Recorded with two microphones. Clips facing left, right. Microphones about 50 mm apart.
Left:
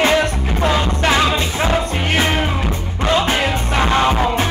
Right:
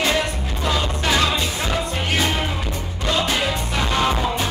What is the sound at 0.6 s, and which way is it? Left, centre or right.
Music, left.